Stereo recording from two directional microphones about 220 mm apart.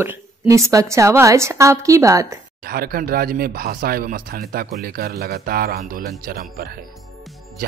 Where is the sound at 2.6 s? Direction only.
45° right (ahead or behind).